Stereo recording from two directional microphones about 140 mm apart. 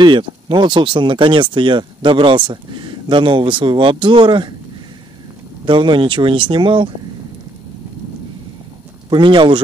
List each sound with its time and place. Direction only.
0.0 s speech: 35° right (ahead or behind)
5.7 s speech: 35° right (ahead or behind)
9.1 s speech: 35° right (ahead or behind)